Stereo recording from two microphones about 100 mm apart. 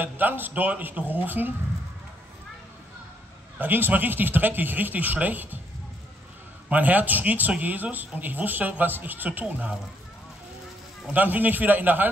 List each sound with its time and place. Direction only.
0.0 s a man's voice: 20° right (ahead or behind)
3.5 s speech: 20° right (ahead or behind)
6.7 s speech: 15° right (ahead or behind)
11.1 s speech: 20° right (ahead or behind)